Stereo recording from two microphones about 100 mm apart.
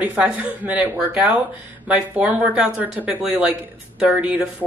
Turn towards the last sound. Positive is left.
turn(degrees=-10)  # may be behind; listen again after turning